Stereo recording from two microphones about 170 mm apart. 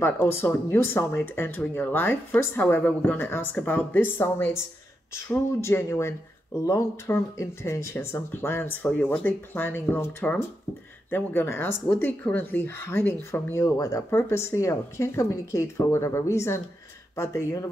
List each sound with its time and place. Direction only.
0.0 s speech: 15° left (ahead or behind)